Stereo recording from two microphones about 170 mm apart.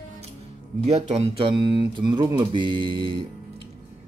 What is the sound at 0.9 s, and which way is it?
Speech, 35° right (ahead or behind).